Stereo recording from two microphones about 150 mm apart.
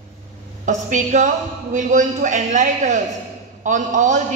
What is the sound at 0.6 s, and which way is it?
A man's voice, 55° right (ahead or behind).